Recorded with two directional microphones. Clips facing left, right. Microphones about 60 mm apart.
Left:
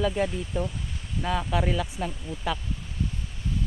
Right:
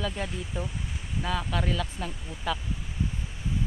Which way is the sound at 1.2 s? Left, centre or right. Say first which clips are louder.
Left 3 dB; centre.